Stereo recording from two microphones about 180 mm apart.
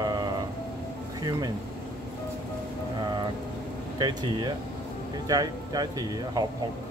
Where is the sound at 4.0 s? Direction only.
25° right (ahead or behind).